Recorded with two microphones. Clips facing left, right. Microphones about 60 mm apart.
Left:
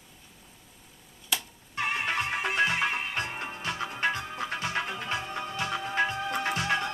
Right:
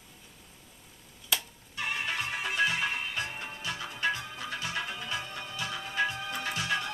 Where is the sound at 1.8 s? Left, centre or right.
Left.